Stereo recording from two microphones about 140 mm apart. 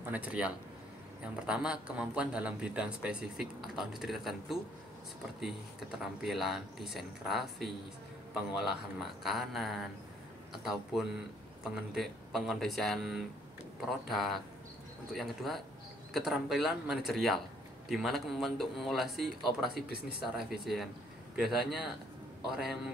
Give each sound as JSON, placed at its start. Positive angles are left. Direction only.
{"t": 0.0, "sound": "speech", "side_deg": -10}
{"t": 19.7, "sound": "speech", "side_deg": -90}
{"t": 20.3, "sound": "speech", "side_deg": -5}